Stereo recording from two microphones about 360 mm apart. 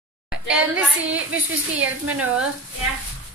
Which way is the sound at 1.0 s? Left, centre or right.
Right.